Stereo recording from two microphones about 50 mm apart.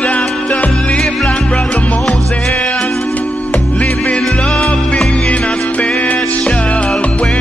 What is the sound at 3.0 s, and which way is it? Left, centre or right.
Music, left.